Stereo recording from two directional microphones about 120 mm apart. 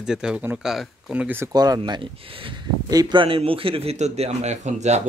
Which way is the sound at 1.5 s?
35° right (ahead or behind).